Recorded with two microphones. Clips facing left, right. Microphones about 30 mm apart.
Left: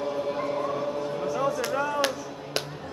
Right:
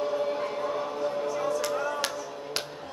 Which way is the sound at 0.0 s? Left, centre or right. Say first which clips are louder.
Even; centre.